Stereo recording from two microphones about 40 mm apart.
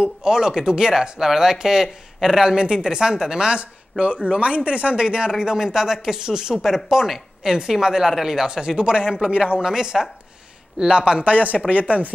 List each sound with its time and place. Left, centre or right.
0.0 s speech: centre
2.5 s a woman's voice: right
7.4 s a woman's voice: centre
11.5 s speech: centre